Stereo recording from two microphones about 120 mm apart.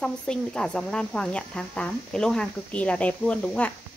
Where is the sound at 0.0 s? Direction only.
5° left (ahead or behind).